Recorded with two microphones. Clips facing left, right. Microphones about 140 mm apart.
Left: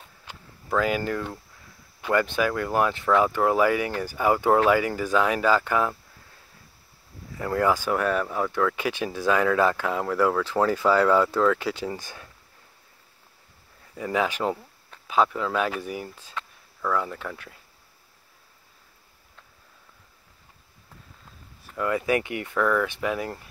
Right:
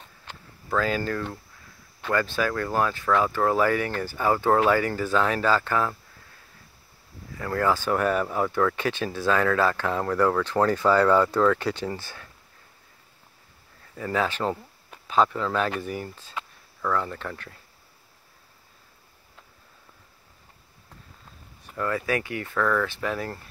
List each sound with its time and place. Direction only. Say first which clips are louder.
0.0 s a sound: right 1 dB; 10° left (ahead or behind)
2.0 s speech: left 2 dB; 15° left (ahead or behind)
7.3 s speech: left 1 dB; 20° left (ahead or behind)
7.9 s speech: right 1 dB; centre (ahead or behind)
8.7 s speech: even; 10° left (ahead or behind)
13.9 s speech: left 1 dB; 15° left (ahead or behind)
21.7 s speech: left 2 dB; 15° left (ahead or behind)